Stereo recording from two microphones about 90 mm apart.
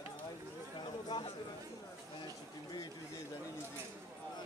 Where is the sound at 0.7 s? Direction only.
60° left (ahead or behind).